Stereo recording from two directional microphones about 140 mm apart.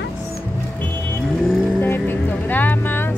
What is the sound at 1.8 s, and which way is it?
Vehicle, 15° left (ahead or behind).